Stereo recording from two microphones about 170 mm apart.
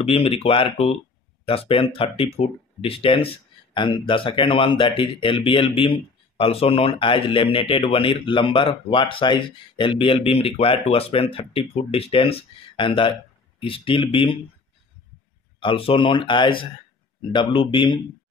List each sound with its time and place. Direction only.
0.0 s speech: 35° left (ahead or behind)
15.6 s speech: 35° left (ahead or behind)